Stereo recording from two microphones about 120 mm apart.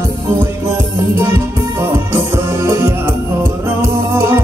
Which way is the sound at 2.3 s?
20° right (ahead or behind).